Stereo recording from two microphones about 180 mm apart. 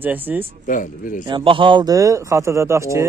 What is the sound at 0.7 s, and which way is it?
Speech, 45° left (ahead or behind).